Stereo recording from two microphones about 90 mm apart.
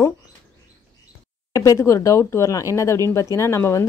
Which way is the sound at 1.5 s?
35° left (ahead or behind).